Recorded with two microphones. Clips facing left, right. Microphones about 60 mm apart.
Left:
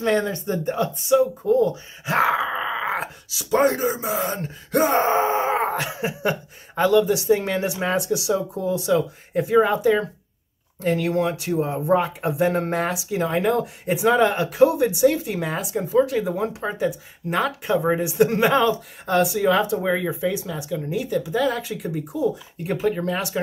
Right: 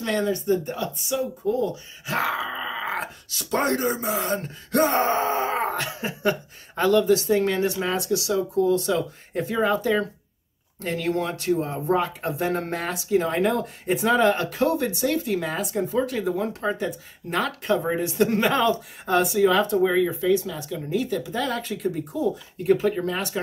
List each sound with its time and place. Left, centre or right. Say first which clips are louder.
0.0 s speech: left 3 dB; left
3.0 s speech: left 1 dB; centre
10.8 s speech: left 4 dB; centre